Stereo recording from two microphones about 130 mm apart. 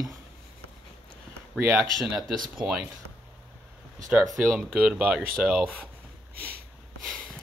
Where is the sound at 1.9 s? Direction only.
Centre (ahead or behind).